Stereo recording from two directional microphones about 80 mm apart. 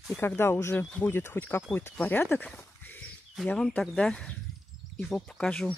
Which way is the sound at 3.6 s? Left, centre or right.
Centre.